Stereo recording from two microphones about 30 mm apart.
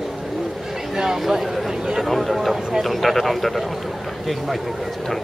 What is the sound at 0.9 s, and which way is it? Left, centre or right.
Speech, centre.